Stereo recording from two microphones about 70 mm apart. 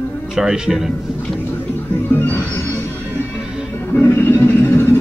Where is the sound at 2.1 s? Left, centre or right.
Left.